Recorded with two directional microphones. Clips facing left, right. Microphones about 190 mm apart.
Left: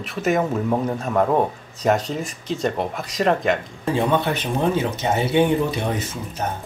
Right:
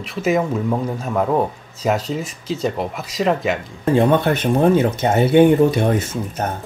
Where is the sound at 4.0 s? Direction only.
50° right (ahead or behind).